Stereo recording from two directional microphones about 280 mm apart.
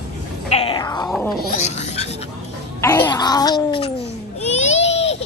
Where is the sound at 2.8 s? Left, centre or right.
Centre.